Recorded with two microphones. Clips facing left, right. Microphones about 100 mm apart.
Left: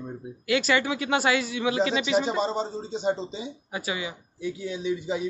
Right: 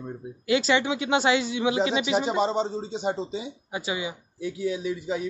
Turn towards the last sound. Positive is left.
turn(degrees=0)  # may be behind; listen again after turning